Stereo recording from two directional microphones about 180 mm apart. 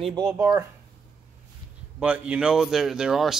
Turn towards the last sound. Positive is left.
turn(degrees=0)  # may be behind; listen again after turning